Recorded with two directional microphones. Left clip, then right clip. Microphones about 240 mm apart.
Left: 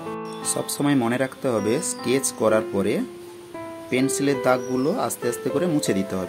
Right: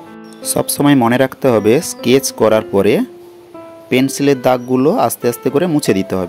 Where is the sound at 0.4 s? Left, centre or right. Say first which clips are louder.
Right 12 dB; right.